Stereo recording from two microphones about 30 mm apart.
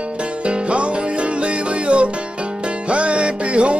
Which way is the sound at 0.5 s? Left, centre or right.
Right.